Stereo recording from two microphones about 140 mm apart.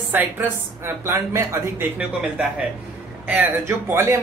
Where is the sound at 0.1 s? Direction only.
15° right (ahead or behind).